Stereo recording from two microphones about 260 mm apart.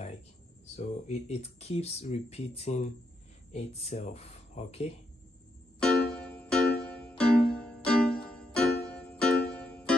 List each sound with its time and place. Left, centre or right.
0.7 s speech: left
5.8 s music: centre